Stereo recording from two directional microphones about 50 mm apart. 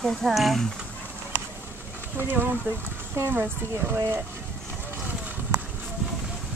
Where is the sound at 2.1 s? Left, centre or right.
Right.